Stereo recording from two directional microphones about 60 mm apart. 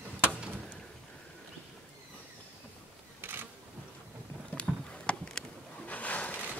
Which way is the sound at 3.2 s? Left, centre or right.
Right.